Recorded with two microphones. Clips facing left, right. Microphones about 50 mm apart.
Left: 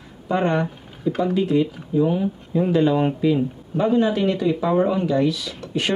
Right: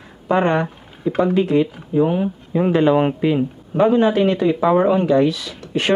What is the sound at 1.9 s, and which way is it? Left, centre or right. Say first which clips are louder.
Speech: right 2 dB; right.